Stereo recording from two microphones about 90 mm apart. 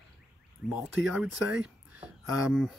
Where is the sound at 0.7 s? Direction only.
20° right (ahead or behind).